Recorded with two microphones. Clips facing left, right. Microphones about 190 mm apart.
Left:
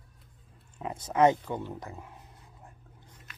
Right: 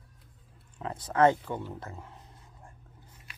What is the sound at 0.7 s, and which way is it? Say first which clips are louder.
Speech: even; 15° left (ahead or behind).